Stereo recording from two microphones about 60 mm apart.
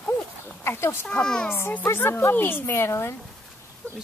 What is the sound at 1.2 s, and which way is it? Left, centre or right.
Speech, centre.